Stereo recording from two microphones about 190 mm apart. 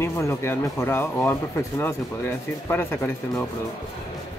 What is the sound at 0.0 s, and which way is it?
Speech, 15° left (ahead or behind).